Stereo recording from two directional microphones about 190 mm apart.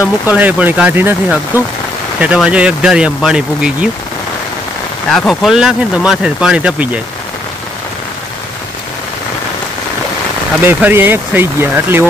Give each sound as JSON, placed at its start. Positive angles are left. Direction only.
{"t": 0.3, "sound": "speech", "side_deg": -10}
{"t": 5.1, "sound": "speech", "side_deg": 0}
{"t": 10.6, "sound": "speech", "side_deg": -10}